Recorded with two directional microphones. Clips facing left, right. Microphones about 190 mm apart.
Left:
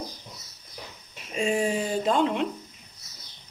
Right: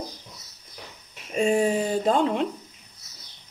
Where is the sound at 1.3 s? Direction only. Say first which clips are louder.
Right 4 dB; 35° right (ahead or behind).